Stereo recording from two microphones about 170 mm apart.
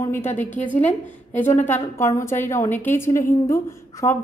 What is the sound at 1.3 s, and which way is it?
A woman's voice, 10° left (ahead or behind).